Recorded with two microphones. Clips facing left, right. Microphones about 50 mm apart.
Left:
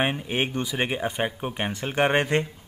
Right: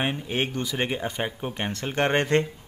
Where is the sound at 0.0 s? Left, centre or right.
Centre.